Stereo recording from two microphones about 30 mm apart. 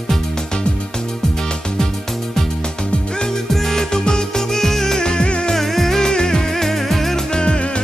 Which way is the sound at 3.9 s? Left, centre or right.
Left.